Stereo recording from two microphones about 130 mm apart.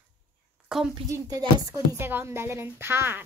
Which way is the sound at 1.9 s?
20° right (ahead or behind).